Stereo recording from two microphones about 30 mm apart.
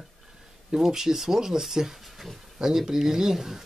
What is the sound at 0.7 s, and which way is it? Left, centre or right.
Speech, centre.